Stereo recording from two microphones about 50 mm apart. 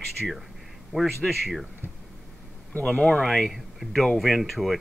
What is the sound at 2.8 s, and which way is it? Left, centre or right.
Speech, centre.